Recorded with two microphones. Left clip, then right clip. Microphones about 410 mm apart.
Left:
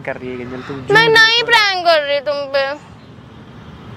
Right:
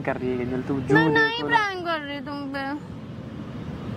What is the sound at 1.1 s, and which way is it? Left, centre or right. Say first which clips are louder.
Speech: left 11 dB; left.